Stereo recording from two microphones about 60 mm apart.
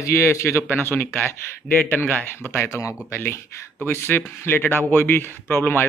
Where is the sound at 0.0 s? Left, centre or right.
Left.